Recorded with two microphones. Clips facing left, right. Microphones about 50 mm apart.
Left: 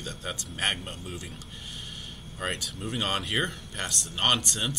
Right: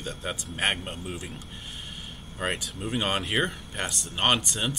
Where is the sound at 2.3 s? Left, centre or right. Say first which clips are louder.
Right 2 dB; centre.